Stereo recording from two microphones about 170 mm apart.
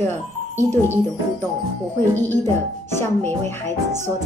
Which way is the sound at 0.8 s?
15° left (ahead or behind).